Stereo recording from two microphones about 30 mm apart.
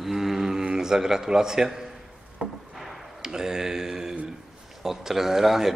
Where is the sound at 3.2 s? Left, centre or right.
Right.